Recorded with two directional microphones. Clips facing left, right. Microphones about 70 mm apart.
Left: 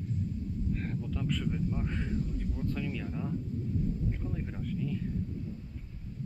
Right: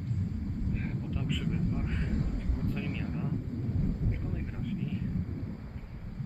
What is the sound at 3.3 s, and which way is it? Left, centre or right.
Wind noise, right.